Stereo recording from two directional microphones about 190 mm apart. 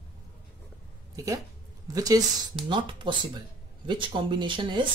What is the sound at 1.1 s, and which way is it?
Speech, 15° right (ahead or behind).